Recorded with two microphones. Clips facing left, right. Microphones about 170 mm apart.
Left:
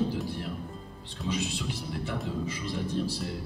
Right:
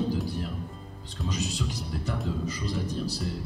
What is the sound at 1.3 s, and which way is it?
Speech, 40° right (ahead or behind).